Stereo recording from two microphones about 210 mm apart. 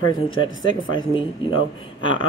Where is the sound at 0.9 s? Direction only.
25° left (ahead or behind).